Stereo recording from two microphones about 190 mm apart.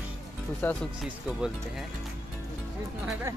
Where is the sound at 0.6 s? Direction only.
10° left (ahead or behind).